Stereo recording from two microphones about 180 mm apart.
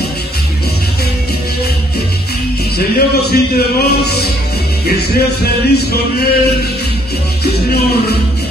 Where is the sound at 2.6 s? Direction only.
65° left (ahead or behind).